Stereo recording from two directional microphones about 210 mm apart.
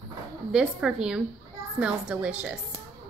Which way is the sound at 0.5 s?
5° right (ahead or behind).